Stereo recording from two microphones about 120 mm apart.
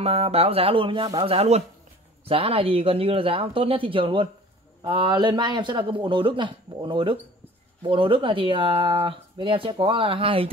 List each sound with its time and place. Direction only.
0.0 s speech: 55° right (ahead or behind)